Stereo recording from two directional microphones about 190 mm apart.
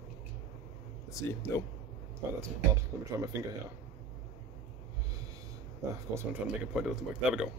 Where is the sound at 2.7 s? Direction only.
15° right (ahead or behind).